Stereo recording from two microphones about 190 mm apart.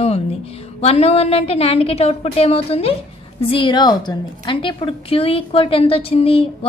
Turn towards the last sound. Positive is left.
turn(degrees=30)  # may be behind; listen again after turning